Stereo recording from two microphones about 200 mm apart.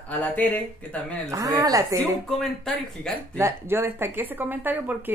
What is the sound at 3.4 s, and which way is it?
Speech, 15° right (ahead or behind).